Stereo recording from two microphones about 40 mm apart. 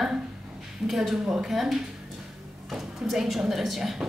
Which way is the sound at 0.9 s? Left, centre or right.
Centre.